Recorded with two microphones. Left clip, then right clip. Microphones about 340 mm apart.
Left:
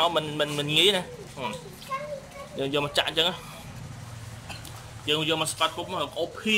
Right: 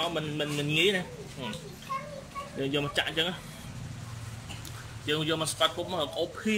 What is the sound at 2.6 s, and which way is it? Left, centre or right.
Speech, centre.